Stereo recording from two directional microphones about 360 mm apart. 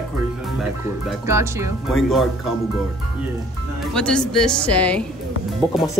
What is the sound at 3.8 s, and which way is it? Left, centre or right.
Speech, centre.